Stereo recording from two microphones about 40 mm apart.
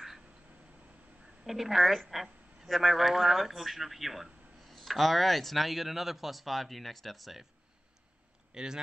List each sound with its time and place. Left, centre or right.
1.4 s speech: centre
8.5 s speech: centre